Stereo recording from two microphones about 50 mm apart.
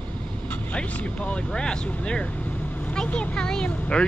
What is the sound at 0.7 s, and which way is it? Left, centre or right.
Speech, left.